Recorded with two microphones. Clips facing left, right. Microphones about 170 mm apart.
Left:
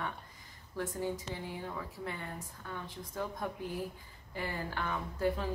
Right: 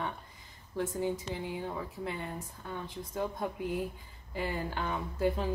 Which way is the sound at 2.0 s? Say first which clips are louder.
Right 3 dB; 20° right (ahead or behind).